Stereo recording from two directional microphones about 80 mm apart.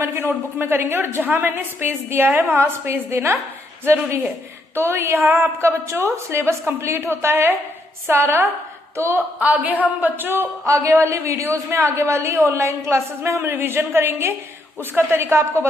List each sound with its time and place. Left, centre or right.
0.0 s a woman's voice: right
9.4 s a woman's voice: centre
10.6 s a man's voice: right